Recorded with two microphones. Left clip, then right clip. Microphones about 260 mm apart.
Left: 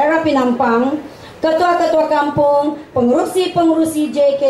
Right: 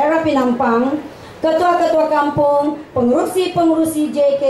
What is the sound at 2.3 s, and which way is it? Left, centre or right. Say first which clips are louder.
A woman's voice: left 1 dB; left.